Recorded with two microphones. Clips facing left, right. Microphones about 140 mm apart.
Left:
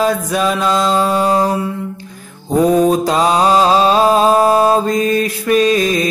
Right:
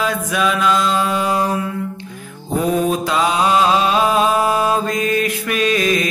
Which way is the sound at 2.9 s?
35° left (ahead or behind).